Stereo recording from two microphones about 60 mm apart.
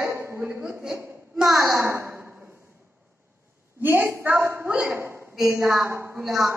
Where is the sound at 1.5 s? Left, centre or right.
Right.